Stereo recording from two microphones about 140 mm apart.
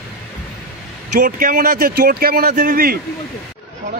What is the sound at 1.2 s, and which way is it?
Speech, 90° right.